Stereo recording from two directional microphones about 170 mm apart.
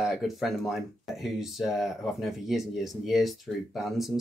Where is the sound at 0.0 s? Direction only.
Centre (ahead or behind).